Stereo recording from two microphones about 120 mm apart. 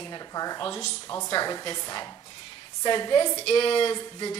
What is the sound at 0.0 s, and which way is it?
A woman's voice, 35° left (ahead or behind).